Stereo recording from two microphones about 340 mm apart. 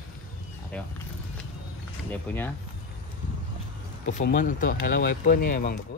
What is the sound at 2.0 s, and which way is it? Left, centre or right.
Speech, centre.